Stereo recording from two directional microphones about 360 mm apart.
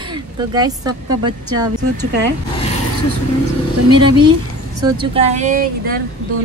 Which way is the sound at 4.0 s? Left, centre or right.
Centre.